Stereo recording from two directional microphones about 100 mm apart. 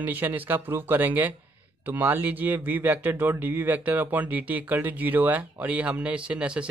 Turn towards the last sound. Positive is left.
turn(degrees=-10)  # may be behind; listen again after turning